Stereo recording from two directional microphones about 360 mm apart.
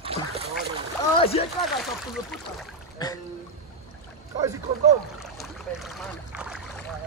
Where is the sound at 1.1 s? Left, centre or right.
Centre.